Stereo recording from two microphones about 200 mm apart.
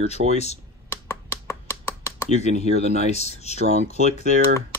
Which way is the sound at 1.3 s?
15° left (ahead or behind).